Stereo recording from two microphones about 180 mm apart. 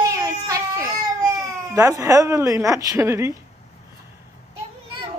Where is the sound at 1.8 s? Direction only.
20° right (ahead or behind).